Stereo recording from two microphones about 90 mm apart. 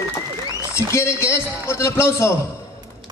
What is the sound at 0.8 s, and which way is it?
A man's voice, 30° left (ahead or behind).